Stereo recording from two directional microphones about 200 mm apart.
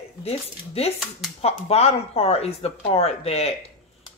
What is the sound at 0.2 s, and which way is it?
Speech, 30° left (ahead or behind).